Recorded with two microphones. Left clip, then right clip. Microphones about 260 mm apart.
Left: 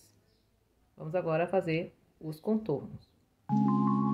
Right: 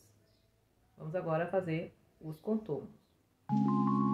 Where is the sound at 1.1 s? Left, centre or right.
Left.